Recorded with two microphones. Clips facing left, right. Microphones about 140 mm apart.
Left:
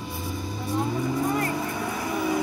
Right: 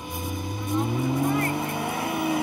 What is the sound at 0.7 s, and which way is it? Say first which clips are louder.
Vehicle: right 1 dB; 20° right (ahead or behind).